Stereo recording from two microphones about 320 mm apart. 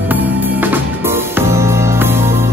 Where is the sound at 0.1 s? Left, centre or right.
Centre.